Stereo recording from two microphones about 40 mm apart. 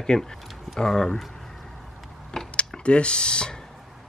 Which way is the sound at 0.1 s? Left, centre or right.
Centre.